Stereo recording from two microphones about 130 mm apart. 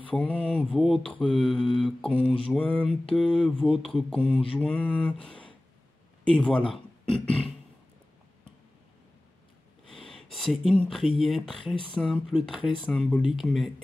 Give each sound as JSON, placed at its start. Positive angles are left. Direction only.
{"t": 0.1, "sound": "mantra", "side_deg": 10}
{"t": 3.1, "sound": "speech", "side_deg": 5}
{"t": 4.6, "sound": "mantra", "side_deg": 10}
{"t": 6.7, "sound": "speech", "side_deg": 5}
{"t": 9.9, "sound": "speech", "side_deg": 0}
{"t": 11.6, "sound": "speech", "side_deg": 40}
{"t": 11.9, "sound": "speech", "side_deg": 5}
{"t": 12.8, "sound": "mantra", "side_deg": 5}
{"t": 13.4, "sound": "speech", "side_deg": 0}